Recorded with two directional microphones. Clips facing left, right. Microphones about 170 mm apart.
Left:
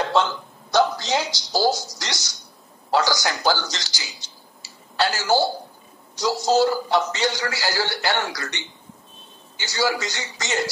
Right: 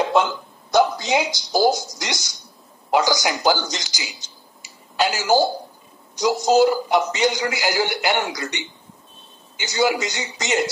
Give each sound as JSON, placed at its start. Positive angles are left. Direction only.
{"t": 0.0, "sound": "a sound", "side_deg": -10}
{"t": 1.7, "sound": "speech", "side_deg": -50}
{"t": 2.9, "sound": "a man's voice", "side_deg": -15}